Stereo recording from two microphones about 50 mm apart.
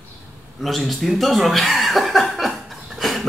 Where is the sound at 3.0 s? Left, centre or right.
Centre.